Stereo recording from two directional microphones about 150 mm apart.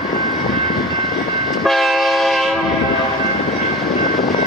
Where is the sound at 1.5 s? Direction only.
Centre (ahead or behind).